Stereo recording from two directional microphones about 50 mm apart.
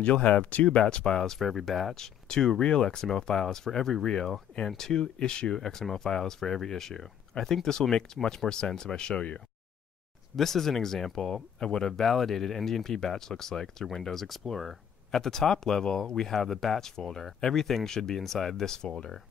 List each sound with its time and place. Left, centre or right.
0.0 s speech: left; by 2.0 s centre
2.2 s speech: centre
10.3 s speech: centre